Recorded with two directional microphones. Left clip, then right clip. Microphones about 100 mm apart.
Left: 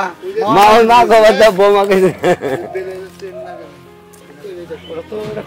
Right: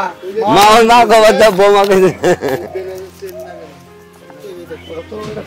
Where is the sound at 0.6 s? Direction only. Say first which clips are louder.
Right 1 dB; 40° right (ahead or behind).